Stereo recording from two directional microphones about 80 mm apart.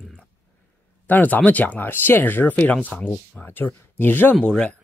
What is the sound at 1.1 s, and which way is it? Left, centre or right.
Speech, left.